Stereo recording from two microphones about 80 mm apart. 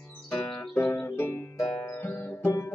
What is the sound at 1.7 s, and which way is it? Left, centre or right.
Music, left.